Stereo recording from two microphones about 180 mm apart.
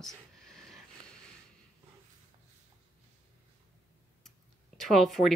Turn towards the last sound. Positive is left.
turn(degrees=0)  # may be behind; listen again after turning